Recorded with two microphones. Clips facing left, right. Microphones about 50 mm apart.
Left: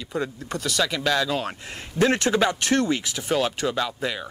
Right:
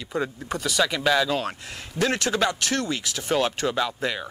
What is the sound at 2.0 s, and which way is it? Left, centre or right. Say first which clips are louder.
Speech: left 3 dB; left.